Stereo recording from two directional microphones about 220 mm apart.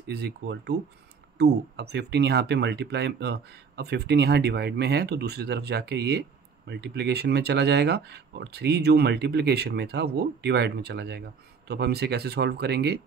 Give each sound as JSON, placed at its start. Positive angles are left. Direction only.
{"t": 0.0, "sound": "speech", "side_deg": -50}